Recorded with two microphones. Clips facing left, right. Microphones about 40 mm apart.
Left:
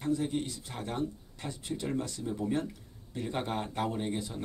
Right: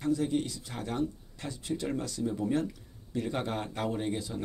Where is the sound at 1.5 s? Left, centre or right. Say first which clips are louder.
Right 3 dB; centre.